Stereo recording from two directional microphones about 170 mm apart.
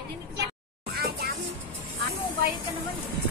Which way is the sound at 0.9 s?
65° right (ahead or behind).